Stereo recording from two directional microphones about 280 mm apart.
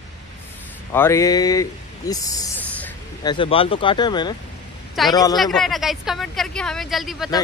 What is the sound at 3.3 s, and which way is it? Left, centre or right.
Speech, centre.